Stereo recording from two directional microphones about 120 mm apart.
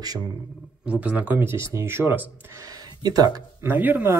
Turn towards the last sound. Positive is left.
turn(degrees=-15)  # may be behind; listen again after turning